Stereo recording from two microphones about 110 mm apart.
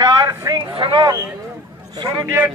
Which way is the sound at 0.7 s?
50° right (ahead or behind).